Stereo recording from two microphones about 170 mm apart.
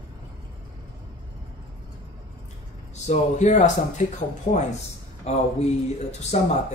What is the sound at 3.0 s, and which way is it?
Speech, 45° left (ahead or behind).